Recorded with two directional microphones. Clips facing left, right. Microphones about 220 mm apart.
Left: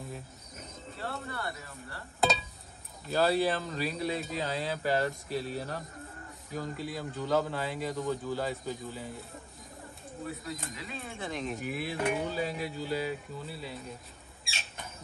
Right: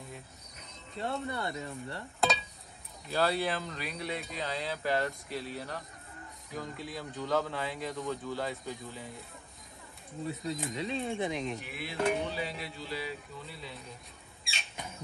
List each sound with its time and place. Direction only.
0.9 s speech: 20° right (ahead or behind)
2.1 s a sound: centre (ahead or behind)
3.1 s a man's voice: centre (ahead or behind)
3.7 s speech: 30° left (ahead or behind)
4.2 s a man's voice: centre (ahead or behind)
10.2 s speech: 20° right (ahead or behind)
11.3 s a man's voice: centre (ahead or behind)
11.6 s speech: 45° left (ahead or behind)
13.5 s a man's voice: 5° left (ahead or behind)